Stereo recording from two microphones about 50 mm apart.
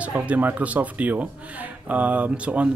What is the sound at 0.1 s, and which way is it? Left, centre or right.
A child's voice, right.